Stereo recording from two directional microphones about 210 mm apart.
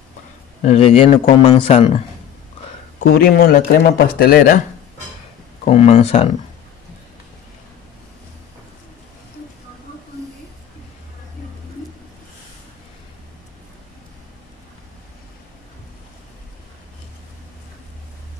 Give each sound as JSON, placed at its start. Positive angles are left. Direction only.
{"t": 0.6, "sound": "a man's voice", "side_deg": 30}
{"t": 3.0, "sound": "a man's voice", "side_deg": 45}
{"t": 5.7, "sound": "a man's voice", "side_deg": 30}